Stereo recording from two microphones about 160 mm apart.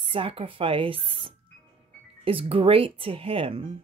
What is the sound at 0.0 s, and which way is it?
Speech, 35° right (ahead or behind).